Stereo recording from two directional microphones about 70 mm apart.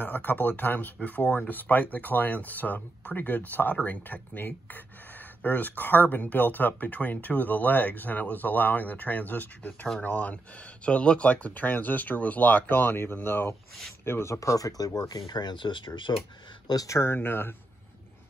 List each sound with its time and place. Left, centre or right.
0.0 s speech: left
16.8 s speech: left
17.1 s speech: left